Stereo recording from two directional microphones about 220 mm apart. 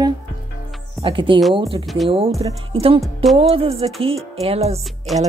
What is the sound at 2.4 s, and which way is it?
A woman's voice, 25° right (ahead or behind).